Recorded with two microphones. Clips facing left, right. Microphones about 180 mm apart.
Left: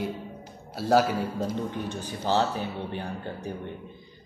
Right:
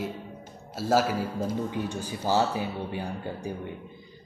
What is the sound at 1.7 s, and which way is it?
Speech, 10° right (ahead or behind).